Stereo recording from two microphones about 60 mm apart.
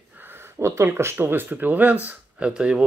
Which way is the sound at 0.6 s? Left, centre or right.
Right.